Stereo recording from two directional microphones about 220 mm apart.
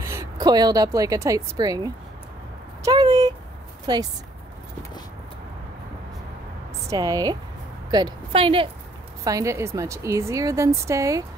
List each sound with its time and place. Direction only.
0.0 s a woman's voice: 10° right (ahead or behind)
2.8 s a sound: 15° right (ahead or behind)
3.8 s speech: 20° right (ahead or behind)
6.9 s a woman's voice: 15° right (ahead or behind)